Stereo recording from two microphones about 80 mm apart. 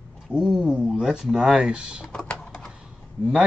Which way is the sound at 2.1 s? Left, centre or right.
Centre.